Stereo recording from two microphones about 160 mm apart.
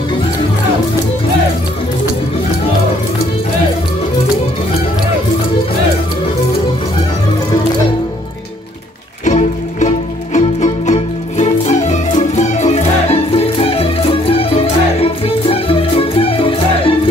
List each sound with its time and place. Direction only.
9.2 s music: 50° left (ahead or behind); by 16.9 s 35° left (ahead or behind)